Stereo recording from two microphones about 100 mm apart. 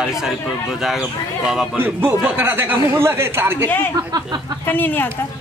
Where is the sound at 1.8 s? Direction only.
20° right (ahead or behind).